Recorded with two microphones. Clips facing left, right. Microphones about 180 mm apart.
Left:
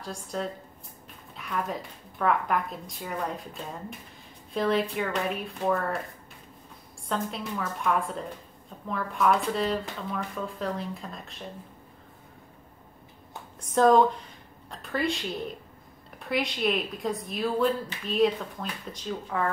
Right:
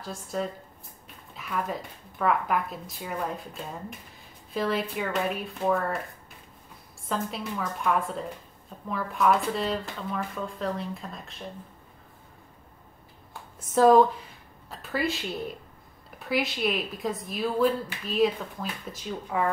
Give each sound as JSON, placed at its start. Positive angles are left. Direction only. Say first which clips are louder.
{"t": 0.0, "sound": "speech", "louder": "right 1 dB", "side_deg": 0}
{"t": 7.1, "sound": "speech", "louder": "even", "side_deg": 0}
{"t": 13.6, "sound": "speech", "louder": "right 2 dB", "side_deg": -5}